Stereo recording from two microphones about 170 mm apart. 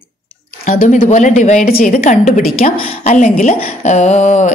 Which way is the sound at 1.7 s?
55° left (ahead or behind).